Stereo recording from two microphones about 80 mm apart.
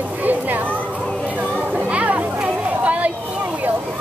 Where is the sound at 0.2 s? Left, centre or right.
Right.